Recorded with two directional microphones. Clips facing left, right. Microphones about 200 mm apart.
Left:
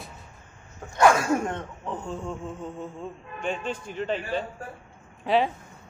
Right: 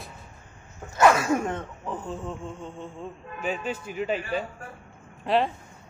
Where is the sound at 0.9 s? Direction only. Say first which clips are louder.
Even; 5° right (ahead or behind).